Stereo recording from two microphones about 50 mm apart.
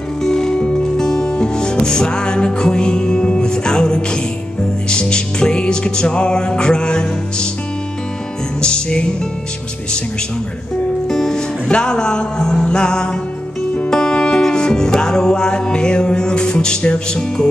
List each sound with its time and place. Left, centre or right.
0.2 s music: centre
8.5 s music: centre
11.1 s music: centre